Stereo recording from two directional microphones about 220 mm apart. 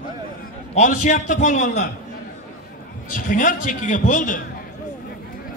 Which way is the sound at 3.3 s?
35° left (ahead or behind).